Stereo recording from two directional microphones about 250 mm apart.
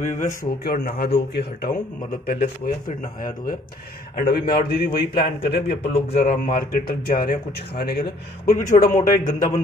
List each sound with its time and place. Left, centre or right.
0.0 s a man's voice: left
8.5 s a man's voice: left